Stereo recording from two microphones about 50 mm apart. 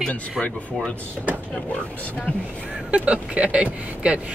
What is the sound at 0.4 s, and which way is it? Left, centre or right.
Speech, centre.